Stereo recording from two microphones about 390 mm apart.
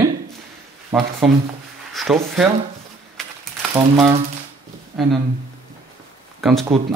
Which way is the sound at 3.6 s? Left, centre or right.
Centre.